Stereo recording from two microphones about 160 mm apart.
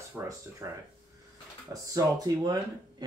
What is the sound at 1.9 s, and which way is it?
Speech, 25° right (ahead or behind).